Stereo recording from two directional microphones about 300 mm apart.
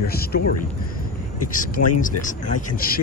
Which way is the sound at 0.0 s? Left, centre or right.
Left.